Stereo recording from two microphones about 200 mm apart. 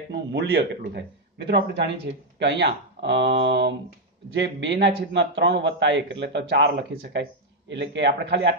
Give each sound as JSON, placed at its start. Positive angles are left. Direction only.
{"t": 0.1, "sound": "a man's voice", "side_deg": -55}